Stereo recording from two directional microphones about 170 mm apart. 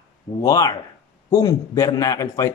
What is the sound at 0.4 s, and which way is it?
A man's voice, 20° left (ahead or behind).